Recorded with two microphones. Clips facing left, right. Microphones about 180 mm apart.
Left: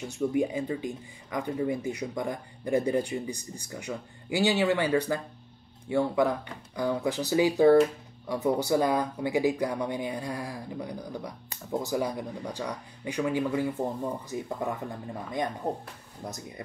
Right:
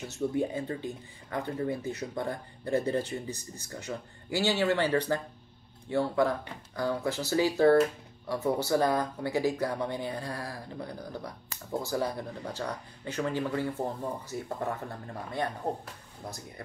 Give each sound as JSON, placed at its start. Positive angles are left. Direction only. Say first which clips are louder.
{"t": 0.1, "sound": "speech", "louder": "left 3 dB", "side_deg": 15}